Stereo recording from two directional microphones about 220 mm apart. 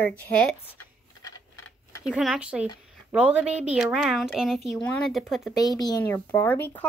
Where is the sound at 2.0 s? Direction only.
5° right (ahead or behind).